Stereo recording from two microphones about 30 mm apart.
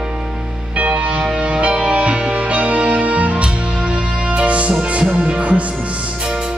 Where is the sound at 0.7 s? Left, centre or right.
Right.